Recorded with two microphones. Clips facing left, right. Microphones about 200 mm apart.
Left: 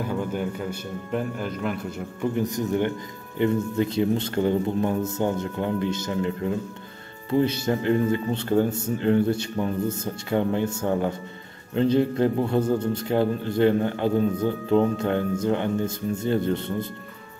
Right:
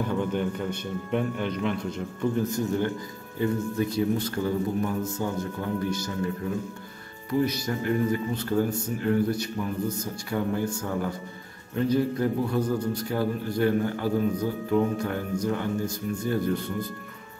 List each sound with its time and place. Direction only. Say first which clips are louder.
0.0 s a man's voice: even; 5° left (ahead or behind); by 16.9 s 25° left (ahead or behind)